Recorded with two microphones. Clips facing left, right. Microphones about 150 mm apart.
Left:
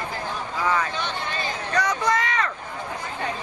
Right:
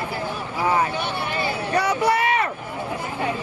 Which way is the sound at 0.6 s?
35° right (ahead or behind).